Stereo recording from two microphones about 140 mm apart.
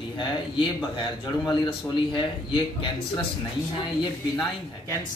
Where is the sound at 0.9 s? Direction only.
30° left (ahead or behind).